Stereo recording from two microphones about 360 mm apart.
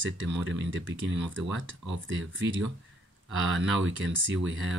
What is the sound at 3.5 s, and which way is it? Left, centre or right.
Speech, right.